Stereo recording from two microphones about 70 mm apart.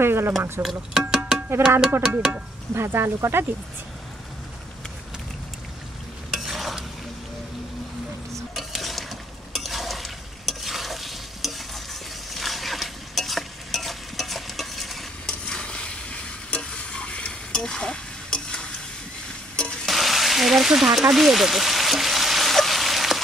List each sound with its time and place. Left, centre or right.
0.0 s speech: right
0.6 s a sound: centre
1.6 s speech: right
2.0 s a sound: centre
2.7 s speech: right
6.3 s stir: centre
8.5 s stir: centre
15.4 s stir: centre
19.5 s frying: centre
19.9 s a sound: centre